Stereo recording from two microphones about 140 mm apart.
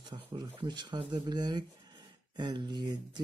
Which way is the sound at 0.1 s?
35° right (ahead or behind).